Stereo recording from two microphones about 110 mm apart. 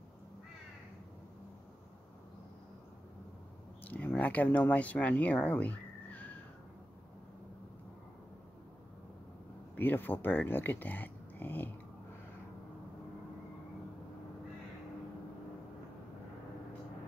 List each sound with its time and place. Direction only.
3.8 s speech: 15° left (ahead or behind)
9.8 s speech: 20° left (ahead or behind)